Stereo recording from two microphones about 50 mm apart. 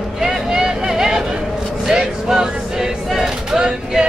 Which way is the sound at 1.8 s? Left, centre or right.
Centre.